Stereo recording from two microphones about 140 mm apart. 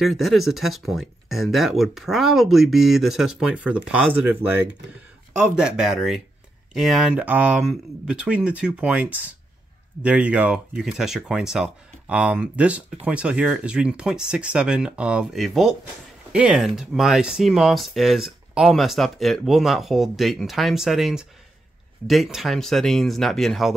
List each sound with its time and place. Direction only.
0.0 s speech: centre (ahead or behind)